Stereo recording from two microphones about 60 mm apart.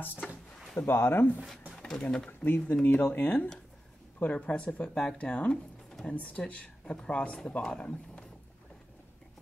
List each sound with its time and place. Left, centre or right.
0.0 s speech: left
1.8 s speech: centre
2.4 s speech: left